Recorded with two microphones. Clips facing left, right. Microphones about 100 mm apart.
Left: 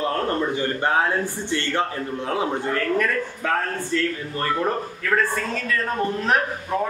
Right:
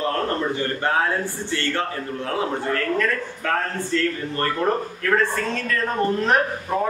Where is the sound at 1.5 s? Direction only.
20° left (ahead or behind).